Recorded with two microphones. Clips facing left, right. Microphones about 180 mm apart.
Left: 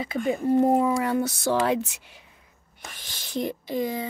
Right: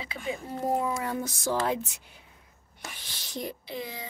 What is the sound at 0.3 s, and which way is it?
Speech, 60° left (ahead or behind).